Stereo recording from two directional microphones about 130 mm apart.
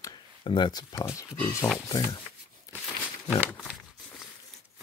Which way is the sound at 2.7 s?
25° left (ahead or behind).